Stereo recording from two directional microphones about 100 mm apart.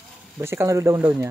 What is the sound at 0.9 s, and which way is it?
Speech, 20° right (ahead or behind).